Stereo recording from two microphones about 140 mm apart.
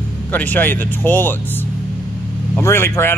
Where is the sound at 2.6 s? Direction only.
15° left (ahead or behind).